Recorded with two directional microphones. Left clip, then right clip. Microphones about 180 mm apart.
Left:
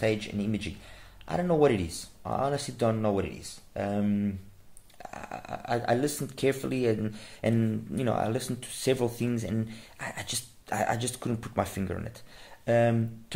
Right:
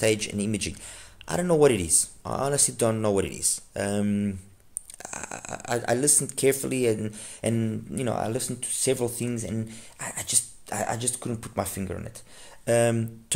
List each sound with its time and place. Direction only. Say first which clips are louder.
0.0 s speech: right 4 dB; 35° right (ahead or behind); by 12.1 s 5° right (ahead or behind)
12.6 s speech: right 2 dB; 25° right (ahead or behind)